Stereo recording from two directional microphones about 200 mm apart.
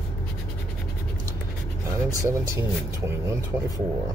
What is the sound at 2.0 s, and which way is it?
Speech, 15° right (ahead or behind).